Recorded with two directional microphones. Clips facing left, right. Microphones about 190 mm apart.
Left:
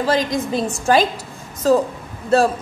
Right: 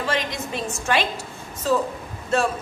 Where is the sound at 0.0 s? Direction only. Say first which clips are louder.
Left 7 dB; 35° left (ahead or behind).